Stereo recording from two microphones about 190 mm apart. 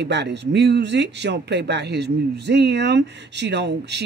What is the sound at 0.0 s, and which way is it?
Speech, 65° right (ahead or behind).